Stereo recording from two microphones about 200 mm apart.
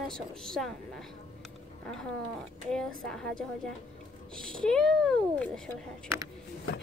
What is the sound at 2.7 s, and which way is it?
Speech, 5° left (ahead or behind).